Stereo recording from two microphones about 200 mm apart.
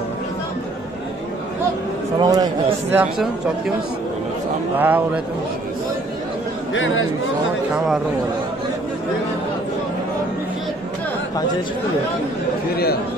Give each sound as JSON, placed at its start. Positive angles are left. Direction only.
{"t": 2.1, "sound": "a man's voice", "side_deg": -20}
{"t": 3.0, "sound": "speech", "side_deg": 0}
{"t": 4.7, "sound": "a man's voice", "side_deg": -10}
{"t": 6.7, "sound": "speech", "side_deg": 75}
{"t": 7.7, "sound": "speech", "side_deg": 0}